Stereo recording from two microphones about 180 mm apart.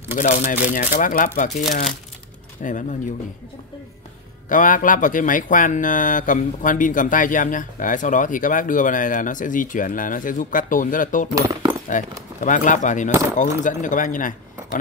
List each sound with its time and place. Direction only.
0.1 s speech: 45° left (ahead or behind)
4.5 s speech: 50° left (ahead or behind)
11.3 s a sound: 15° right (ahead or behind)
11.9 s speech: 45° left (ahead or behind)